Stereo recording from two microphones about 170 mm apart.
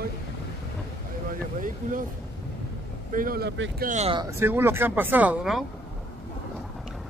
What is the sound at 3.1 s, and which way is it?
Speech, 60° right (ahead or behind).